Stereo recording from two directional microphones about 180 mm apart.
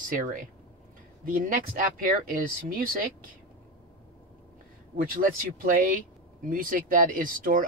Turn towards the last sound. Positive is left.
turn(degrees=-50)  # may be behind; listen again after turning